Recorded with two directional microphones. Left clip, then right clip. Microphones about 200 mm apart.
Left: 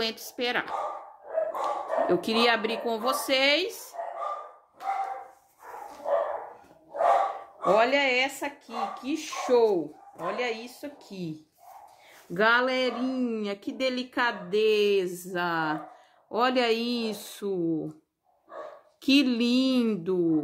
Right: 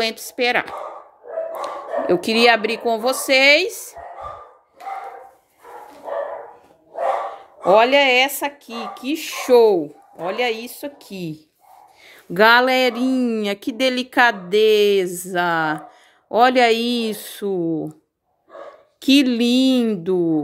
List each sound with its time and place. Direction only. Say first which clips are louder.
0.0 s a woman's voice: right 9 dB; 30° right (ahead or behind)
7.6 s speech: right 9 dB; 50° right (ahead or behind)
12.4 s speech: right 10 dB; 50° right (ahead or behind); by 17.9 s 25° right (ahead or behind)
18.9 s a woman's voice: right 7 dB; 30° right (ahead or behind)